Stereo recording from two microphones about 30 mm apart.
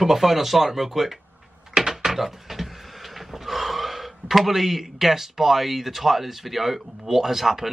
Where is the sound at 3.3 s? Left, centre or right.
Centre.